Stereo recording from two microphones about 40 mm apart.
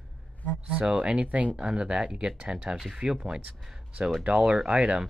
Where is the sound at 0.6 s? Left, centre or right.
Right.